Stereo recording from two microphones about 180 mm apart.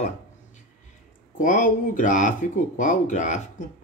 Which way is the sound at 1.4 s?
45° left (ahead or behind).